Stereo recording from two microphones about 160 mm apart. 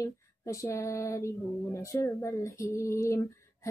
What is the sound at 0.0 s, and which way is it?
Female singing, 20° left (ahead or behind).